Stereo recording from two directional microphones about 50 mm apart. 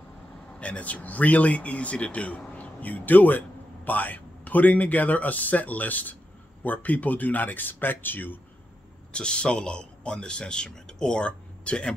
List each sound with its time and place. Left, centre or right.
0.5 s speech: left
9.1 s a man's voice: centre